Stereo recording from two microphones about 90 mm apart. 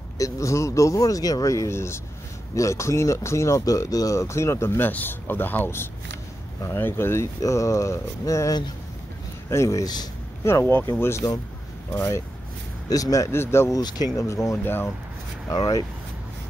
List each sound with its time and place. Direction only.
0.2 s speech: 35° left (ahead or behind)
10.4 s speech: 25° left (ahead or behind)
12.9 s speech: 40° left (ahead or behind)
13.7 s speech: 50° left (ahead or behind)
14.1 s speech: 35° left (ahead or behind)
15.4 s speech: 45° left (ahead or behind)